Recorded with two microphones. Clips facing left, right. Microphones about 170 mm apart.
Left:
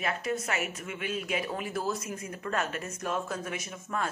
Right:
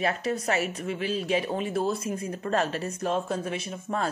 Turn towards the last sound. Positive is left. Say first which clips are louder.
# right 4 dB
turn(degrees=-30)  # may be behind; listen again after turning